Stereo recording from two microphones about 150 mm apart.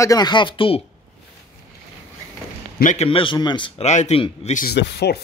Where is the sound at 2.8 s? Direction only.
55° left (ahead or behind).